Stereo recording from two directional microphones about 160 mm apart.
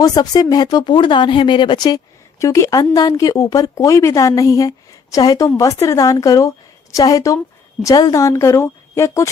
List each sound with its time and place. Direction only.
0.0 s a woman's voice: 25° left (ahead or behind)